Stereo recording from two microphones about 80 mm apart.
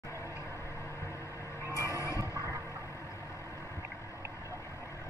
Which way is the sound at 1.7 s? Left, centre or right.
Left.